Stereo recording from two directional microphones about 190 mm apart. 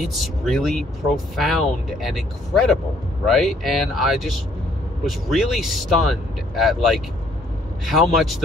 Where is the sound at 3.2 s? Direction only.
Centre (ahead or behind).